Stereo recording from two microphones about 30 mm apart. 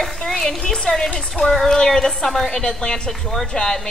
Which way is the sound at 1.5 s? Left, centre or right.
Centre.